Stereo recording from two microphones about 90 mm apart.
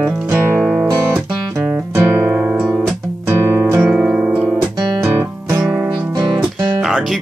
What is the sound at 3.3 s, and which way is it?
Music, 30° right (ahead or behind).